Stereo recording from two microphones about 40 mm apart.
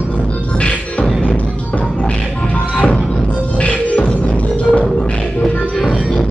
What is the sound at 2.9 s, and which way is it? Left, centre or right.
Music, left.